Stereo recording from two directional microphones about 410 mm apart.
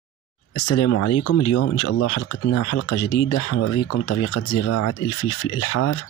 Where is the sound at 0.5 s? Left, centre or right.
Left.